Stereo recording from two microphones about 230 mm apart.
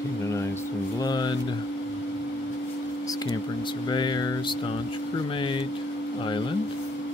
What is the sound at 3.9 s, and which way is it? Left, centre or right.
Speech, centre.